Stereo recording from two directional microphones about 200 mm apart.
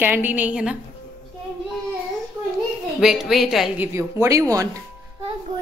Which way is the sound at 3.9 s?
15° right (ahead or behind).